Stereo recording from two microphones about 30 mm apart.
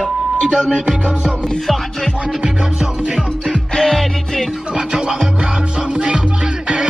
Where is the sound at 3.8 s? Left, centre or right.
Centre.